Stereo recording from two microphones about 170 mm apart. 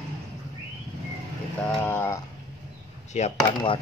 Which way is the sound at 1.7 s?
15° left (ahead or behind).